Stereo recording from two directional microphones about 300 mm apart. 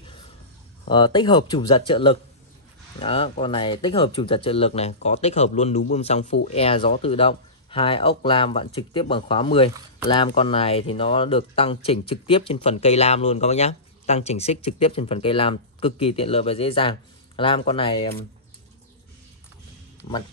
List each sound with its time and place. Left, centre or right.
0.8 s speech: centre